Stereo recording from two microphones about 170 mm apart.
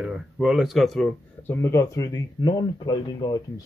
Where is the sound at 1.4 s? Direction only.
10° left (ahead or behind).